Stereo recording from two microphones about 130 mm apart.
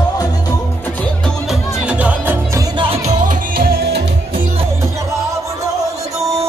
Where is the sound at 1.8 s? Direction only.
10° right (ahead or behind).